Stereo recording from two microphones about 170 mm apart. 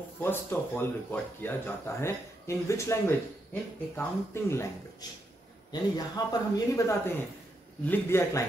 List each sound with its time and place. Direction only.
0.2 s speech: 10° left (ahead or behind)
5.7 s speech: 25° left (ahead or behind)